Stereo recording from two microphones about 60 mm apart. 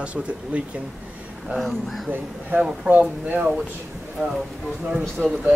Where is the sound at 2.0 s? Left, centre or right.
Right.